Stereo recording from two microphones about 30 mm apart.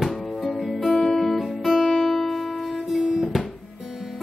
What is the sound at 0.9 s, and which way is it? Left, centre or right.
Guitar, centre.